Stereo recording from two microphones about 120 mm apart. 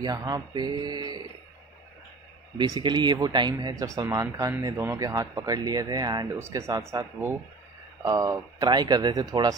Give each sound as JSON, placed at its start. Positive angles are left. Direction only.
{"t": 0.0, "sound": "speech", "side_deg": -35}
{"t": 2.5, "sound": "speech", "side_deg": -35}
{"t": 8.2, "sound": "speech", "side_deg": -35}